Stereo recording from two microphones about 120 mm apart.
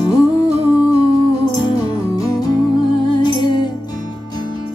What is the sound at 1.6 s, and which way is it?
Music, 35° left (ahead or behind).